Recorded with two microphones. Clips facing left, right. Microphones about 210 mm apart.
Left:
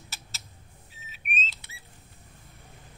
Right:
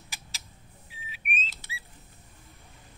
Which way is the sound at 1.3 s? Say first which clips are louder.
Left 2 dB; 50° right (ahead or behind).